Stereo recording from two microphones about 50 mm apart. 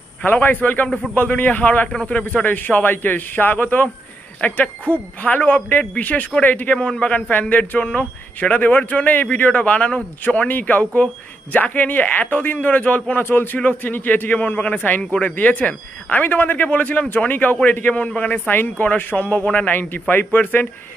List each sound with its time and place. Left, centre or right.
0.2 s speech: left
0.8 s a man's voice: centre
1.1 s speech: left
6.8 s a man's voice: left
18.5 s speech: left